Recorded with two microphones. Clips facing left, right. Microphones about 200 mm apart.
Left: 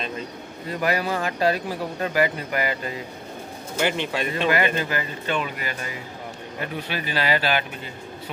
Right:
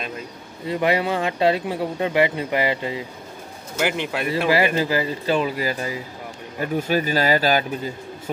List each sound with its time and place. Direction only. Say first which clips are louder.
0.7 s speech: right 4 dB; 25° right (ahead or behind)
3.7 s speech: right 1 dB; 10° right (ahead or behind)
4.7 s a man's voice: right 5 dB; 30° right (ahead or behind)